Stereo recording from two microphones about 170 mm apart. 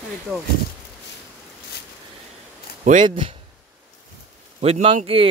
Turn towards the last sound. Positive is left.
turn(degrees=-35)  # may be behind; listen again after turning